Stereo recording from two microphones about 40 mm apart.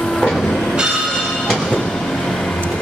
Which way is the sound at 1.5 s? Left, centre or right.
Centre.